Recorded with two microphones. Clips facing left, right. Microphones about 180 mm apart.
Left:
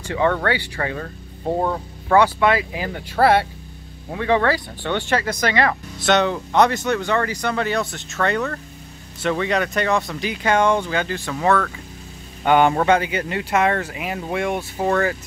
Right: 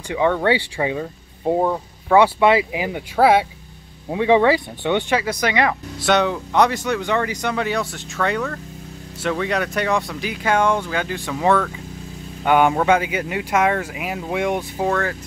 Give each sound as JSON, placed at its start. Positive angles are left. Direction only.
{"t": 0.1, "sound": "speech", "side_deg": -10}
{"t": 0.4, "sound": "speech", "side_deg": -25}
{"t": 0.7, "sound": "speech", "side_deg": -10}
{"t": 2.1, "sound": "speech", "side_deg": -25}
{"t": 14.8, "sound": "speech", "side_deg": 5}